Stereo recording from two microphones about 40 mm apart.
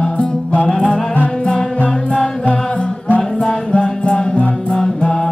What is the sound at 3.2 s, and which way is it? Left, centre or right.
Music, left.